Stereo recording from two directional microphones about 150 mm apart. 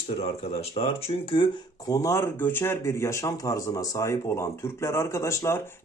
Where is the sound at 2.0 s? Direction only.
20° left (ahead or behind).